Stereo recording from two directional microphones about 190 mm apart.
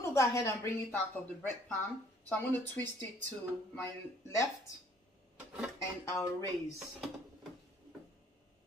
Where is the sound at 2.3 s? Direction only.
10° left (ahead or behind).